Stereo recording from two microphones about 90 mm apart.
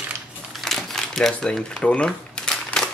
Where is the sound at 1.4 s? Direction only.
10° left (ahead or behind).